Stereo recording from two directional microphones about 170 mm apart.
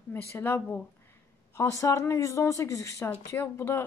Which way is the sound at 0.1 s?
15° left (ahead or behind).